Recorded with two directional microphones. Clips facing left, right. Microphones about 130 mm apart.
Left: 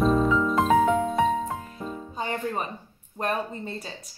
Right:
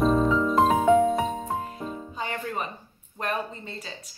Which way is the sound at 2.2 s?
35° left (ahead or behind).